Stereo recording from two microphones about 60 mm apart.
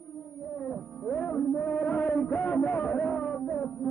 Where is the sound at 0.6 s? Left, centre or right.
Centre.